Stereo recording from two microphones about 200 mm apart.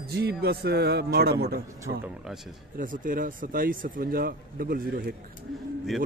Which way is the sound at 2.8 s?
40° right (ahead or behind).